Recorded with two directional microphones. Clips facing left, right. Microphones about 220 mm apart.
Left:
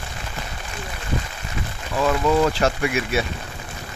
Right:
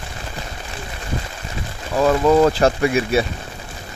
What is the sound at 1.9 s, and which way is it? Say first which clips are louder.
Speech: right 5 dB; 40° right (ahead or behind).